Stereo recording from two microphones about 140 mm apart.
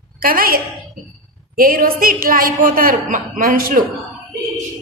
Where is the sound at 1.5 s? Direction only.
90° right.